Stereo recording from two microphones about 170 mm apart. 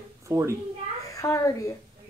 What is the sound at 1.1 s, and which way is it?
Speech, 20° left (ahead or behind).